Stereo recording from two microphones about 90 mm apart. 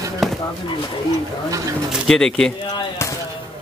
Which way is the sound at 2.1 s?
5° left (ahead or behind).